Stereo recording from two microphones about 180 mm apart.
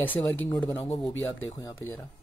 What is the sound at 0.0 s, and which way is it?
Speech, 10° left (ahead or behind).